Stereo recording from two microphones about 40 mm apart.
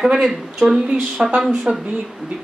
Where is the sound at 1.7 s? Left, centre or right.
Right.